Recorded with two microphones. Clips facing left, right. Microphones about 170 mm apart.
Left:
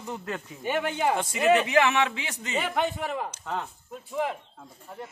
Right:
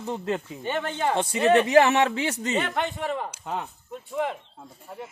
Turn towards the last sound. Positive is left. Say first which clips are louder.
# right 1 dB
turn(degrees=-5)  # may be behind; listen again after turning